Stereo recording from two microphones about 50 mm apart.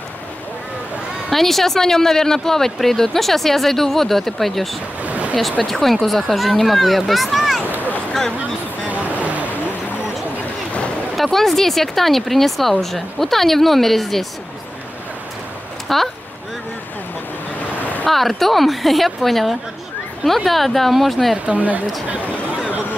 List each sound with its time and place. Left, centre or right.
1.3 s speech: centre
5.0 s a sound: right
5.7 s a child's voice: centre
8.8 s vehicle: right
11.1 s speech: centre
15.9 s speech: centre
18.0 s speech: centre
21.5 s speech: right